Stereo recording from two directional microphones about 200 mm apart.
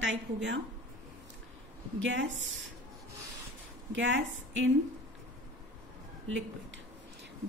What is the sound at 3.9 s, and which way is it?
Speech, 70° right (ahead or behind).